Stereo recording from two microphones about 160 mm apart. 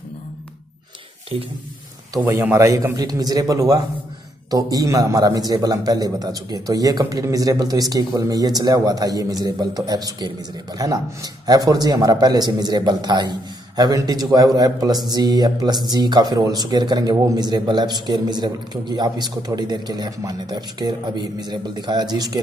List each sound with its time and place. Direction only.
1.3 s speech: 35° right (ahead or behind)
2.1 s a man's voice: 10° right (ahead or behind)